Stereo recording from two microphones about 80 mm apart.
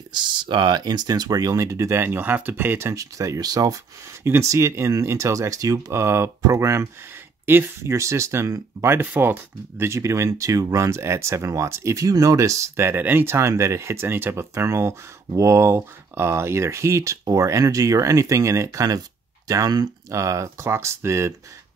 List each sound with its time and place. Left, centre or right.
0.1 s speech: right
2.9 s speech: right
4.2 s speech: right
7.4 s speech: right